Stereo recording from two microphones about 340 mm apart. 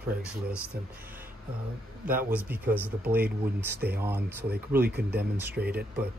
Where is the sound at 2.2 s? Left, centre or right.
Centre.